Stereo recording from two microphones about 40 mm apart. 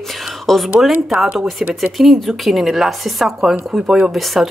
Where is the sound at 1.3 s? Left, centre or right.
Right.